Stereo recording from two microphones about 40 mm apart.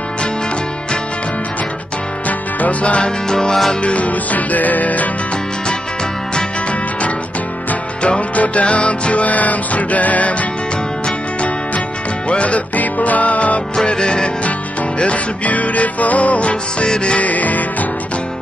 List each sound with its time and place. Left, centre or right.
2.2 s music: left
3.3 s music: centre
3.8 s music: left
8.4 s music: left
12.3 s music: left
13.8 s music: left
15.0 s music: left
17.2 s music: left